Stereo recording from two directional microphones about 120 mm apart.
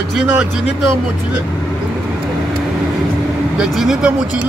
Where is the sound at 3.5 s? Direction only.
5° right (ahead or behind).